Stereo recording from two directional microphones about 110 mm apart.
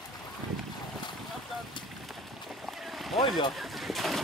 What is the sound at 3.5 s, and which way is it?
Vehicle, centre (ahead or behind).